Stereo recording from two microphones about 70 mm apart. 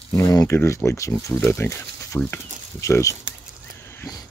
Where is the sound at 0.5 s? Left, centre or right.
Left.